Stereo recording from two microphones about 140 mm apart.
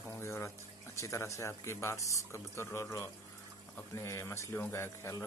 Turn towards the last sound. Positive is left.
turn(degrees=20)  # may be behind; listen again after turning